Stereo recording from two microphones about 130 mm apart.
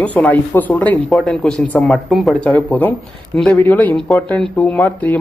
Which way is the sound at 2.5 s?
10° left (ahead or behind).